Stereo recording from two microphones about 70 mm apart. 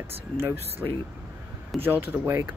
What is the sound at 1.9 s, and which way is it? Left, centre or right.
Speech, right.